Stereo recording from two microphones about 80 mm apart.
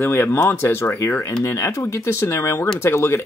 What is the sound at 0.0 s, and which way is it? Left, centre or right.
Speech, left.